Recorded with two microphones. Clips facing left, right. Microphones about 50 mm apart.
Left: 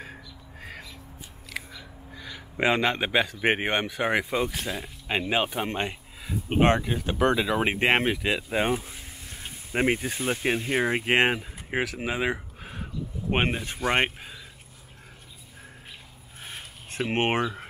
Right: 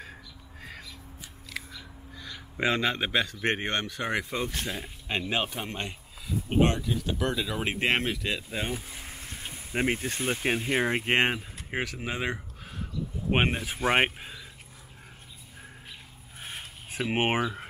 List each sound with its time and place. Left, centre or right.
0.0 s squawk: centre
1.5 s speech: centre
5.7 s speech: left
8.9 s vehicle: right
9.7 s speech: centre
13.3 s speech: centre
16.4 s a sound: centre
17.1 s speech: centre